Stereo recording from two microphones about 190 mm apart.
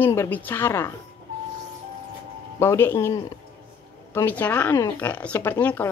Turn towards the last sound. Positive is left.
turn(degrees=10)  # may be behind; listen again after turning